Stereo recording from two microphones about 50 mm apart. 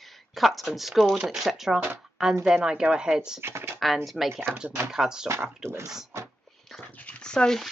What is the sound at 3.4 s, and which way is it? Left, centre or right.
Speech, right.